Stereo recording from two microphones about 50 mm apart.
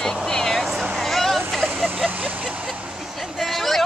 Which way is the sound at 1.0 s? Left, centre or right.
Centre.